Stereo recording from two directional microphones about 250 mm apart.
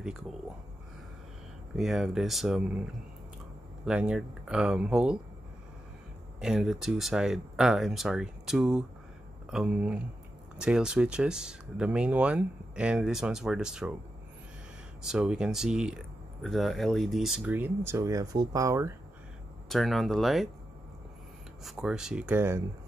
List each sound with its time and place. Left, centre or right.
1.8 s speech: centre
3.8 s speech: centre
6.4 s speech: centre
15.0 s speech: centre
19.7 s speech: centre
21.6 s speech: centre